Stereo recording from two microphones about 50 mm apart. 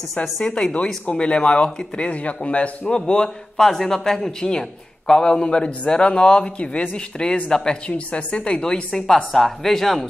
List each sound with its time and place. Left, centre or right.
0.1 s a woman's voice: centre